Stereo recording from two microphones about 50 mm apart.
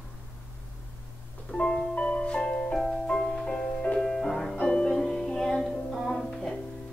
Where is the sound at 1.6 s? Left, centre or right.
Centre.